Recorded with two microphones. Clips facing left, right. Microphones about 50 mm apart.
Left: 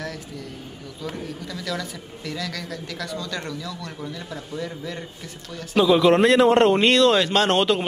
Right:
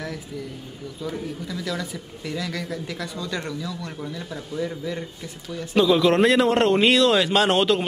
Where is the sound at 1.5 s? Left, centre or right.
Centre.